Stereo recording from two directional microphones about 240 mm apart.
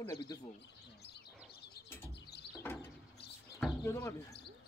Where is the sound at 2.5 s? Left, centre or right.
Centre.